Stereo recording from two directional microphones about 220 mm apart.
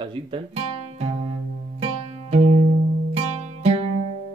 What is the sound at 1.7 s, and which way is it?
Music, 30° right (ahead or behind).